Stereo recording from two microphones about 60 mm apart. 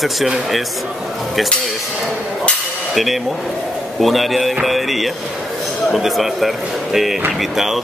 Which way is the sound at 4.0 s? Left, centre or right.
Centre.